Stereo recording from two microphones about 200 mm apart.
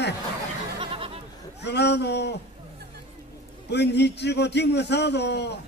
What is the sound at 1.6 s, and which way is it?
Speech, 55° left (ahead or behind).